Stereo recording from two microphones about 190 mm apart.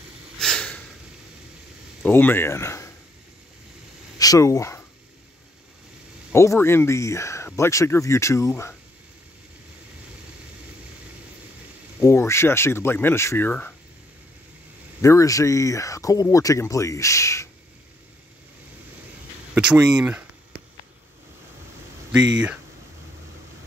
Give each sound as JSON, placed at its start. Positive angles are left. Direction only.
{"t": 0.4, "sound": "snort", "side_deg": 5}
{"t": 2.0, "sound": "speech", "side_deg": 10}
{"t": 4.2, "sound": "speech", "side_deg": 20}
{"t": 6.3, "sound": "speech", "side_deg": 15}
{"t": 12.0, "sound": "speech", "side_deg": 15}
{"t": 15.0, "sound": "speech", "side_deg": 15}
{"t": 19.5, "sound": "speech", "side_deg": -5}